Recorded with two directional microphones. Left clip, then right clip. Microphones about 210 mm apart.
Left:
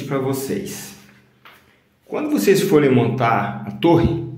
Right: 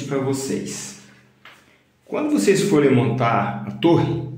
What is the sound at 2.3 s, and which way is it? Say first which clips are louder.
Speech: left 3 dB; 20° left (ahead or behind).